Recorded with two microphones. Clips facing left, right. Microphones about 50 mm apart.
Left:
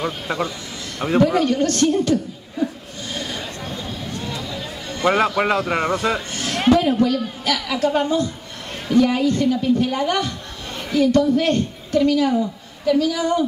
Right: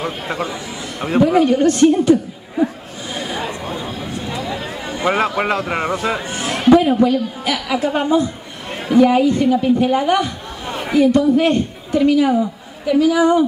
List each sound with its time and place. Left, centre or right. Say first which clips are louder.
0.0 s a man's voice: right 1 dB; centre
2.6 s laughter: right 5 dB; right
3.2 s a sound: right 6 dB; centre
6.7 s a man's voice: right 5 dB; centre